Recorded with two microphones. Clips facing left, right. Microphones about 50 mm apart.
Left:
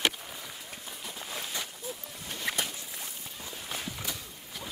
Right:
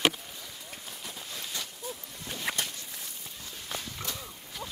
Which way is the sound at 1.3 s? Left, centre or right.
Centre.